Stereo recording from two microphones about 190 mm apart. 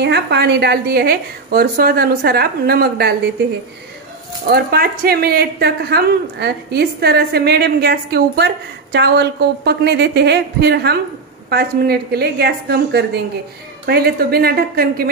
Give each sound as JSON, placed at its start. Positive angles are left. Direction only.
{"t": 0.0, "sound": "a woman's voice", "side_deg": -65}
{"t": 4.5, "sound": "a woman's voice", "side_deg": -55}